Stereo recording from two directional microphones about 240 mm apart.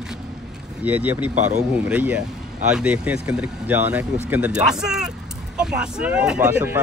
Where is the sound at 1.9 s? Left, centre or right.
Centre.